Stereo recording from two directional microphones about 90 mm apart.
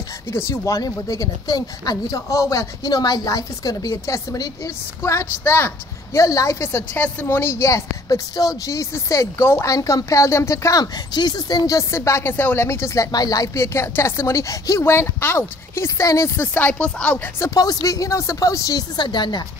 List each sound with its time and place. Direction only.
0.3 s a woman's voice: 30° left (ahead or behind)
13.7 s speech: 30° left (ahead or behind)
16.5 s speech: 15° left (ahead or behind)
17.8 s a woman's voice: 40° left (ahead or behind); by 19.4 s 55° left (ahead or behind)